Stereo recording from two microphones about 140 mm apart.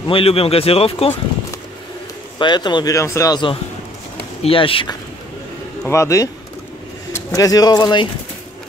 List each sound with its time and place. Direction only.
0.1 s speech: 40° left (ahead or behind)
2.3 s speech: 35° left (ahead or behind)
4.4 s speech: 40° left (ahead or behind)
5.9 s speech: 20° left (ahead or behind)